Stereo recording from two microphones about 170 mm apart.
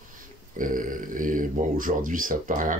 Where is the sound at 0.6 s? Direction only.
50° right (ahead or behind).